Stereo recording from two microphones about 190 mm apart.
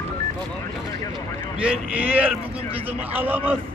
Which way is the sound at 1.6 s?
10° right (ahead or behind).